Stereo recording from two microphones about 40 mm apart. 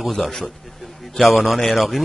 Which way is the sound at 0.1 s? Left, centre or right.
Centre.